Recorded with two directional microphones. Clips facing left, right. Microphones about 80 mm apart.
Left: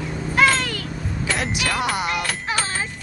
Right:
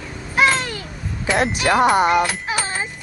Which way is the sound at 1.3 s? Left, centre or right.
Right.